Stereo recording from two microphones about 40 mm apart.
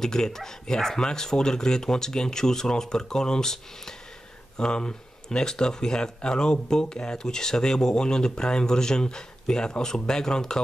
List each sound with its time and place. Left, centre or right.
0.0 s speech: centre